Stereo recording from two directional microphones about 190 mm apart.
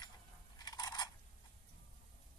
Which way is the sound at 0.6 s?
20° left (ahead or behind).